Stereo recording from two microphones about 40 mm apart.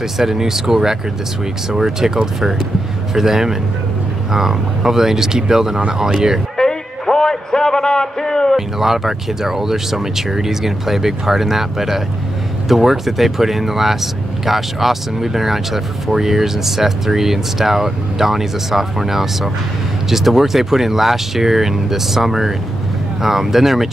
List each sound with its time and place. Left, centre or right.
0.2 s speech: centre
3.2 s speech: centre
6.5 s music: centre
8.5 s speech: centre